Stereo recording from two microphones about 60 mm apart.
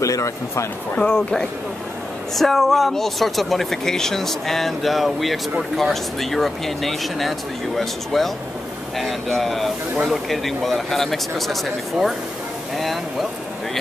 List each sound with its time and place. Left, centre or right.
0.0 s speech: left
0.9 s speech: centre
2.3 s speech: centre